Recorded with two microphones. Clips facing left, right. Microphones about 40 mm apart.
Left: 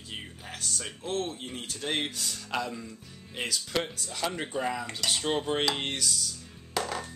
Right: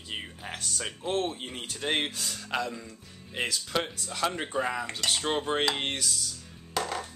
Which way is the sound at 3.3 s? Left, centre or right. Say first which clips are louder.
Right 1 dB; centre.